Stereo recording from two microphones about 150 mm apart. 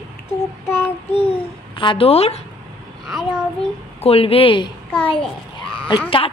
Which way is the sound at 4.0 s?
40° left (ahead or behind).